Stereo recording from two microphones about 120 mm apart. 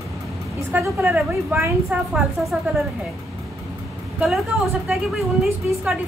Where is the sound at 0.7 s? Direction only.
10° right (ahead or behind).